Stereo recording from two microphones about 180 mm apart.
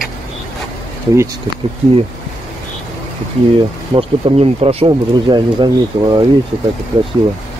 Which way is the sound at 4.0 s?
30° right (ahead or behind).